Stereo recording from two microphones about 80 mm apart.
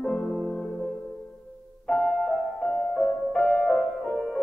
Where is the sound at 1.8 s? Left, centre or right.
Centre.